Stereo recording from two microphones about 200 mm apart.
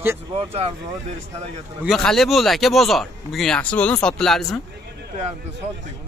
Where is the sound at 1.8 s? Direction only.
Centre (ahead or behind).